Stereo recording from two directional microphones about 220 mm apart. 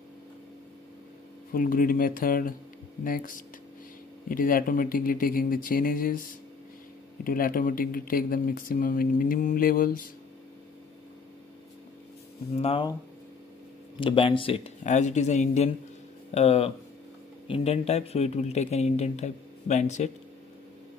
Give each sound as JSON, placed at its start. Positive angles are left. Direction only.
{"t": 1.5, "sound": "speech", "side_deg": 40}
{"t": 12.5, "sound": "speech", "side_deg": 25}
{"t": 13.9, "sound": "speech", "side_deg": 25}